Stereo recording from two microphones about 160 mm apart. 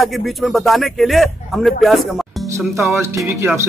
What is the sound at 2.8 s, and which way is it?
Speech, 15° right (ahead or behind).